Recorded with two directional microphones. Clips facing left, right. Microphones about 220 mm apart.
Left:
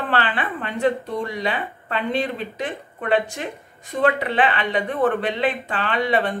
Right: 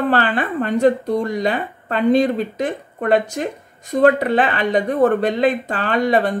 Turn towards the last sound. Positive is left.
turn(degrees=-45)  # may be behind; listen again after turning